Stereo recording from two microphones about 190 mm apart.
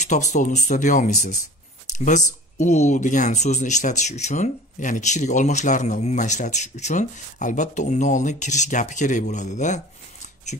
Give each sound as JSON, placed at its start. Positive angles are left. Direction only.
{"t": 0.0, "sound": "speech", "side_deg": 40}
{"t": 2.6, "sound": "speech", "side_deg": 40}
{"t": 10.5, "sound": "a sound", "side_deg": 45}